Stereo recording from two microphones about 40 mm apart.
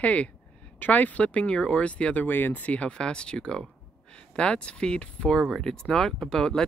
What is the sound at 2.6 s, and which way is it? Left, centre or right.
Speech, left.